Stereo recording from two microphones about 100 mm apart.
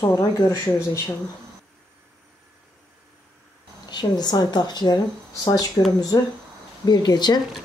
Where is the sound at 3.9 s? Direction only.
45° left (ahead or behind).